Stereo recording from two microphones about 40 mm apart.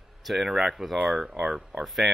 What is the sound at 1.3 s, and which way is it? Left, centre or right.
Speech, centre.